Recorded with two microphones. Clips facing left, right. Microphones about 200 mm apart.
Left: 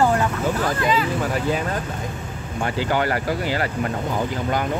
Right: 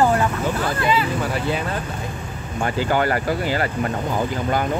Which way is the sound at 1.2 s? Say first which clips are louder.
Left 1 dB; 45° left (ahead or behind).